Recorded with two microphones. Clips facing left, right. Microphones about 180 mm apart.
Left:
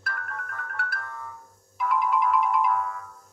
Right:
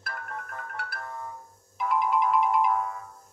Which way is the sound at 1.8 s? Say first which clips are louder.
Left 1 dB; 30° right (ahead or behind).